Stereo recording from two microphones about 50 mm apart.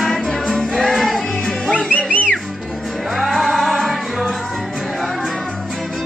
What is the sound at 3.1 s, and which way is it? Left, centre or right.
Music, centre.